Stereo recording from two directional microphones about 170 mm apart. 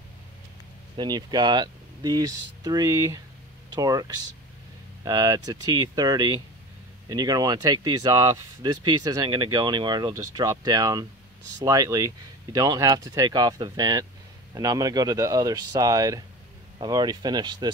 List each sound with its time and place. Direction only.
0.9 s speech: 25° right (ahead or behind)
5.0 s speech: 20° right (ahead or behind)